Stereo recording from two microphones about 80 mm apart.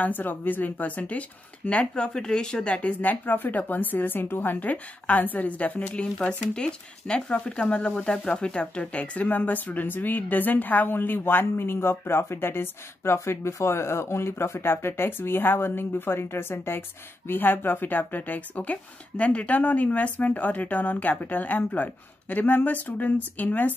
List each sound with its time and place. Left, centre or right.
0.0 s speech: left